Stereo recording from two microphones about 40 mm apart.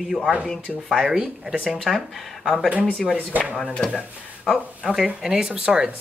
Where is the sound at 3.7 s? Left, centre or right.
Centre.